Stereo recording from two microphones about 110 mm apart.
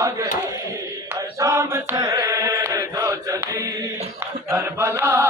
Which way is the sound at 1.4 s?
30° right (ahead or behind).